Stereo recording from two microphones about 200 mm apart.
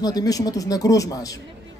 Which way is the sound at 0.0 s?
20° left (ahead or behind).